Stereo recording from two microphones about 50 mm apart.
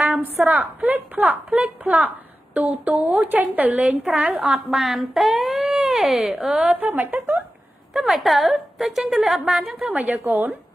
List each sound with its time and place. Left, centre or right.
0.5 s a woman's voice: right
4.0 s a woman's voice: centre
6.6 s a woman's voice: right
7.9 s a woman's voice: centre
9.8 s a woman's voice: right